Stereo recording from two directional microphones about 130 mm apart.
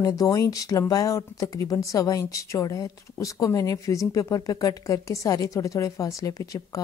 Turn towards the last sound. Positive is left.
turn(degrees=25)  # may be behind; listen again after turning